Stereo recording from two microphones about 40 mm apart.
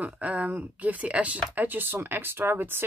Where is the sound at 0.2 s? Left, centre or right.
Right.